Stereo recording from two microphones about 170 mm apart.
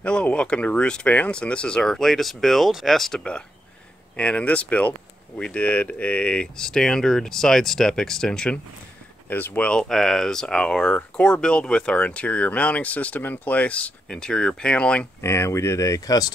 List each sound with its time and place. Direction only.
0.0 s speech: 5° left (ahead or behind)